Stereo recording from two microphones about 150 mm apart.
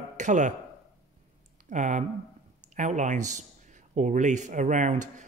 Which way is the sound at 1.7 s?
55° right (ahead or behind).